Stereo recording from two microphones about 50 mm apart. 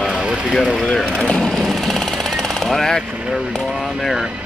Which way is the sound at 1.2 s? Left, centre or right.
Centre.